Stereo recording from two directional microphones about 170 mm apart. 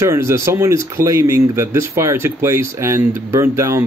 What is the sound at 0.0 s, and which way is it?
Speech, 15° right (ahead or behind).